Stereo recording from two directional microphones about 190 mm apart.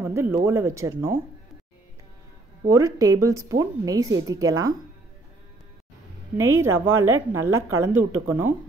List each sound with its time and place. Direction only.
0.0 s a sound: 15° right (ahead or behind)
0.5 s a woman's voice: 15° right (ahead or behind)
2.7 s a woman's voice: 15° right (ahead or behind)
6.3 s a woman's voice: 15° right (ahead or behind)